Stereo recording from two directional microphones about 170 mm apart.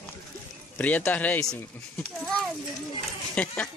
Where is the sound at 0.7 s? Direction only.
10° left (ahead or behind).